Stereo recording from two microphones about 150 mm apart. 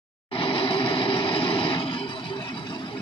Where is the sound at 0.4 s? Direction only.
35° left (ahead or behind).